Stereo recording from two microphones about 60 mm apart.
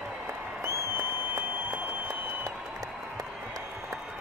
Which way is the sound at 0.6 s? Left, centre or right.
Right.